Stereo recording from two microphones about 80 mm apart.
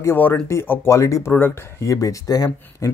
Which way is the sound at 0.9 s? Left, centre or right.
Left.